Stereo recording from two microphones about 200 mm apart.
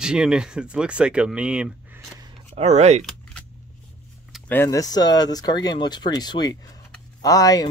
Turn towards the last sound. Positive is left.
turn(degrees=20)  # may be behind; listen again after turning